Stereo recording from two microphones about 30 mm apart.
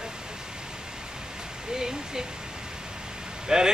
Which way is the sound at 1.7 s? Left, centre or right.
Centre.